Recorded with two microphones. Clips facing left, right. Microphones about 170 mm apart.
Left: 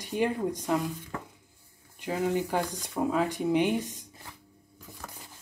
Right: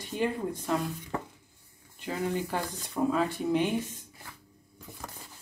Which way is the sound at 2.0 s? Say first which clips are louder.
Left 3 dB; 15° left (ahead or behind).